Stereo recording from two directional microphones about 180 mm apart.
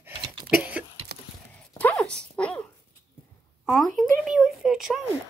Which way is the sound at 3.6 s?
Centre (ahead or behind).